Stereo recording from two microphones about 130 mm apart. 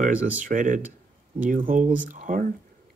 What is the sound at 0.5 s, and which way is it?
Speech, 90° right.